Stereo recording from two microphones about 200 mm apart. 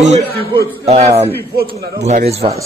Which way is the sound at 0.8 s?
30° right (ahead or behind).